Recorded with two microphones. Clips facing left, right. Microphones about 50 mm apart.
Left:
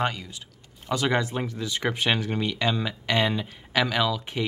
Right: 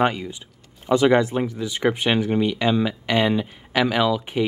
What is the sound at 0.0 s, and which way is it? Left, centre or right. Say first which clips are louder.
Speech: right 7 dB; right.